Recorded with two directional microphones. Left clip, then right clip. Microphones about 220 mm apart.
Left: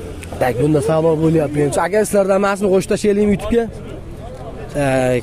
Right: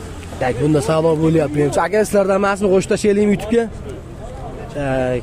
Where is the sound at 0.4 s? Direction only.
25° left (ahead or behind).